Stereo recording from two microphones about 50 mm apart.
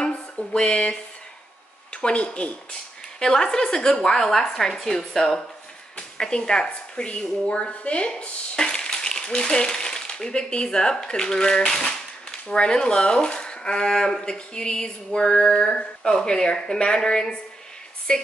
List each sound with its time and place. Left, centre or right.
0.5 s speech: centre
2.0 s a woman's voice: left